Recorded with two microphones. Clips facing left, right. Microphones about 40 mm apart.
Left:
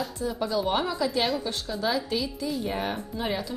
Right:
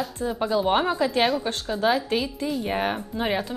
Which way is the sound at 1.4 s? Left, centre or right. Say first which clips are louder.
Right 5 dB; right.